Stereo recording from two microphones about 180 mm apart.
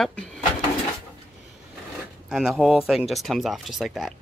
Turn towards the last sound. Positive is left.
turn(degrees=0)  # may be behind; listen again after turning